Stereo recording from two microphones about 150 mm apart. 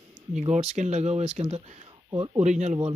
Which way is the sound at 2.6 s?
45° right (ahead or behind).